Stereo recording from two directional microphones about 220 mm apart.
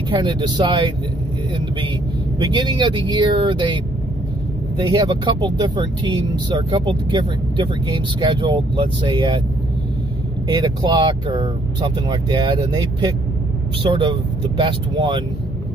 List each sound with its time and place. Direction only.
0.2 s speech: 20° right (ahead or behind)
2.3 s speech: 20° right (ahead or behind)
4.8 s speech: 20° right (ahead or behind)
10.5 s speech: 20° right (ahead or behind)